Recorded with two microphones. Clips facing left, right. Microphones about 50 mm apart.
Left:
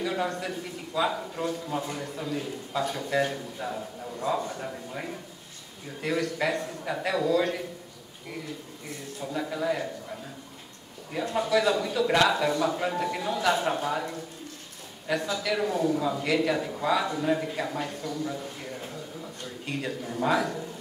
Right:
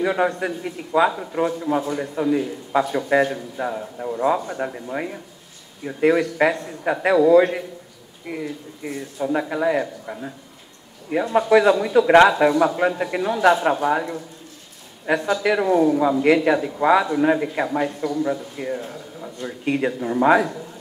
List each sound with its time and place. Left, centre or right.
0.0 s a man's voice: right
11.3 s a man's voice: right